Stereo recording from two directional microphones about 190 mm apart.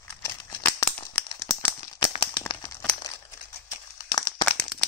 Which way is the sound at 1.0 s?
20° left (ahead or behind).